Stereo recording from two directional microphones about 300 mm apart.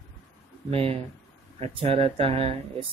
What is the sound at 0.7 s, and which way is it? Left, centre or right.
Speech, centre.